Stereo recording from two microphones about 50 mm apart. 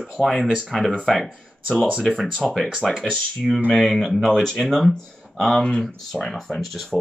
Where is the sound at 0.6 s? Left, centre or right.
Centre.